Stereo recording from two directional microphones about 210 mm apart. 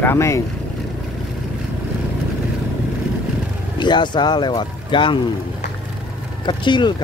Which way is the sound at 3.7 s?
20° left (ahead or behind).